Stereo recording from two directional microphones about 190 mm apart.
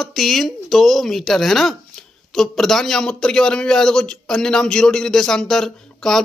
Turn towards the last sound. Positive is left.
turn(degrees=0)  # may be behind; listen again after turning